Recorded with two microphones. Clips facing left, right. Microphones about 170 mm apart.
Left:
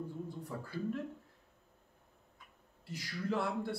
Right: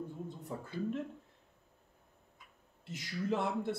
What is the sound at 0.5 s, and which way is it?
Speech, 20° right (ahead or behind).